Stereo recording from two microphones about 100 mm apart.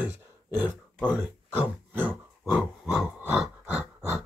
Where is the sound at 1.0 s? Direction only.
15° right (ahead or behind).